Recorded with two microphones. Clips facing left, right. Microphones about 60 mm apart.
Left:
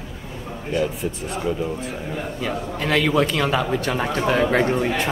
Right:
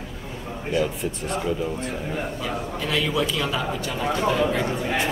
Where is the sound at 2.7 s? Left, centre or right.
Left.